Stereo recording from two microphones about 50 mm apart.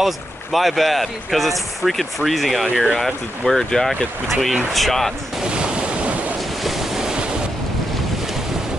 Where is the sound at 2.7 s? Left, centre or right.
Centre.